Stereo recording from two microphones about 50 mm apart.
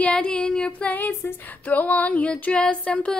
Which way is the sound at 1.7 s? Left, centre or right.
Left.